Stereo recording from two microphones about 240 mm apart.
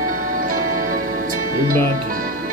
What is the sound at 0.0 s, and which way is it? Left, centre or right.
Music, right.